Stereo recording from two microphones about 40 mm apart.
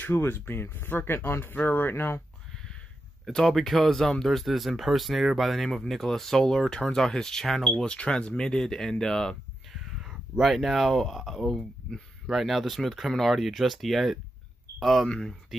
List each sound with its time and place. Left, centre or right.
0.1 s speech: left
1.5 s speech: left
2.5 s a sound: centre
3.3 s speech: centre
9.8 s speech: centre
11.4 s speech: centre
12.3 s speech: centre
15.0 s speech: centre